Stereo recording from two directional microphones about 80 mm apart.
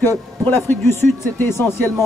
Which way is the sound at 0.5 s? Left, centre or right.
Left.